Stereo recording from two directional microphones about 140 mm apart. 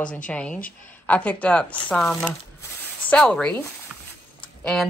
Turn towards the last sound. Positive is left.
turn(degrees=5)  # may be behind; listen again after turning